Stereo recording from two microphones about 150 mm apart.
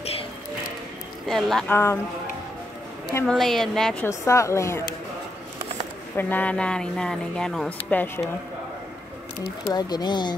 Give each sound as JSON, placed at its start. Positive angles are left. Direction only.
{"t": 1.2, "sound": "speech", "side_deg": 0}
{"t": 1.7, "sound": "speech", "side_deg": 15}
{"t": 3.3, "sound": "speech", "side_deg": 0}
{"t": 4.0, "sound": "speech", "side_deg": 20}
{"t": 6.1, "sound": "speech", "side_deg": 10}
{"t": 9.7, "sound": "speech", "side_deg": 25}